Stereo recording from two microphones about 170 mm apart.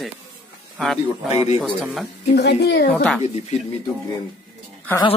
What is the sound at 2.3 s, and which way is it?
Speech, 80° left.